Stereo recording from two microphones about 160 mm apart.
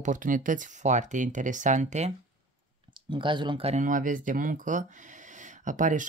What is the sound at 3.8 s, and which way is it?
Speech, 55° right (ahead or behind).